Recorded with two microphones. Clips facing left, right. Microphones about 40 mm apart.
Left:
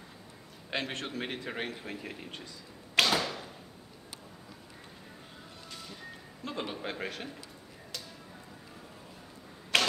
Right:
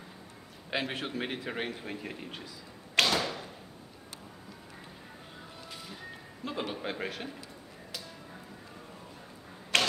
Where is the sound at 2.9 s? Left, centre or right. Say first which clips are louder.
Even; centre.